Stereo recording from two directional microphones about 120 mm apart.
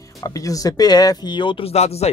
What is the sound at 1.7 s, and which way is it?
Speech, 60° left (ahead or behind).